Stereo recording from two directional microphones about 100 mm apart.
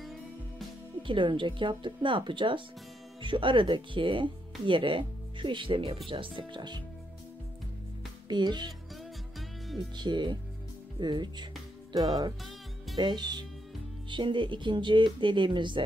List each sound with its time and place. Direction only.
0.0 s music: centre (ahead or behind)
1.0 s speech: 55° right (ahead or behind)
8.3 s speech: 45° right (ahead or behind)
9.9 s speech: 50° right (ahead or behind)
11.9 s music: 35° right (ahead or behind)
12.9 s speech: 45° right (ahead or behind)